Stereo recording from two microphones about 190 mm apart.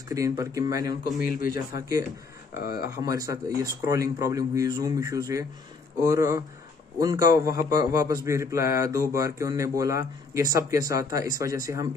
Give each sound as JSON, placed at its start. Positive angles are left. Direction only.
{"t": 0.1, "sound": "a man's voice", "side_deg": -15}
{"t": 1.2, "sound": "a man's voice", "side_deg": 50}
{"t": 1.8, "sound": "a man's voice", "side_deg": -15}
{"t": 2.5, "sound": "a man's voice", "side_deg": 50}
{"t": 2.9, "sound": "a man's voice", "side_deg": -20}